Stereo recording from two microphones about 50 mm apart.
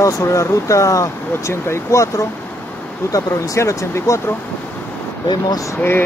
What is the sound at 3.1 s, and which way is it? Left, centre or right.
Speech, left.